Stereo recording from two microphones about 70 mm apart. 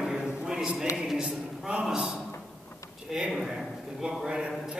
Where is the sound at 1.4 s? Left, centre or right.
Centre.